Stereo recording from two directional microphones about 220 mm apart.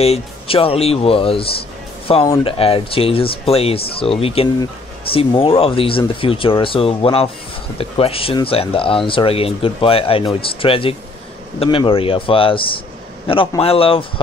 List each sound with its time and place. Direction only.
0.0 s speech: 25° left (ahead or behind)